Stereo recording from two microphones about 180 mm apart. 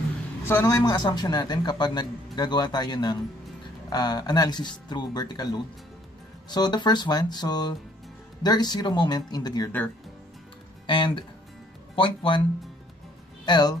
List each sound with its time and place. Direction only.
0.5 s a man's voice: 15° left (ahead or behind)
10.9 s a man's voice: 25° left (ahead or behind)
13.5 s a man's voice: 25° left (ahead or behind)